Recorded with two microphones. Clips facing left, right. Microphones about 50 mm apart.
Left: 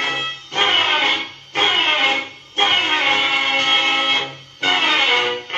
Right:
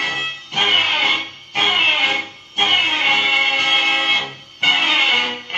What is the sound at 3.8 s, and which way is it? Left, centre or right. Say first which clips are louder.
Music: even; centre.